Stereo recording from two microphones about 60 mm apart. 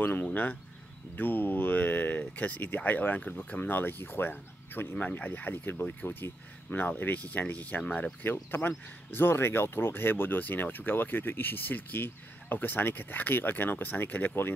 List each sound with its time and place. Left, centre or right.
0.0 s speech: left
8.2 s speech: left